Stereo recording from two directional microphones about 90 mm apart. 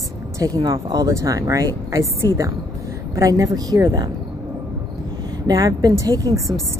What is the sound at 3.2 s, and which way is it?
Speech, 40° right (ahead or behind).